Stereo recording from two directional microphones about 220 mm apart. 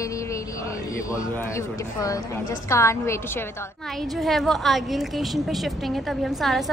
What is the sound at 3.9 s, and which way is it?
A woman's voice, centre (ahead or behind).